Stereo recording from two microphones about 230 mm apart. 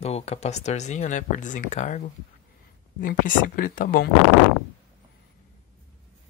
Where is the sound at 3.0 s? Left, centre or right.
Left.